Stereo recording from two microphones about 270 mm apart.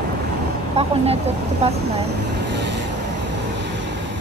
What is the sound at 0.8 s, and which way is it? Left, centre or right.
Vehicle, right.